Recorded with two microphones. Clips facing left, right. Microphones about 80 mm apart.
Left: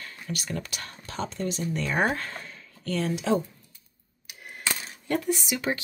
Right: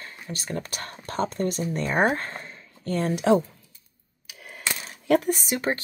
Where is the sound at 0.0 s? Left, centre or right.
Right.